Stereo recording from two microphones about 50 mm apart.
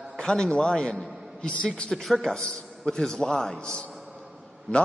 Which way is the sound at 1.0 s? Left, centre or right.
Centre.